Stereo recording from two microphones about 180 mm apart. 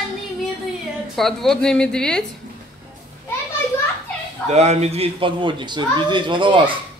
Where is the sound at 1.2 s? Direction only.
Centre (ahead or behind).